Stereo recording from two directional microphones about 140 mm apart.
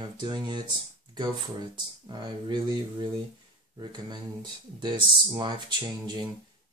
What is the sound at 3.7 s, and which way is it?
Speech, 30° right (ahead or behind).